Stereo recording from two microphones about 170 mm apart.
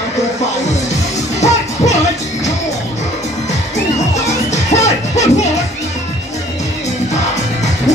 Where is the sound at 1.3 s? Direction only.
40° left (ahead or behind).